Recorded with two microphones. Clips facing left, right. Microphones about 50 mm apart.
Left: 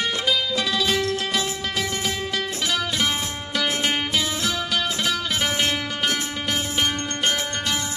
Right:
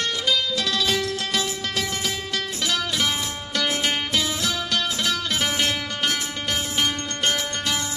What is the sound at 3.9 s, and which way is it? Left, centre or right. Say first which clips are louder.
Music: left 1 dB; centre.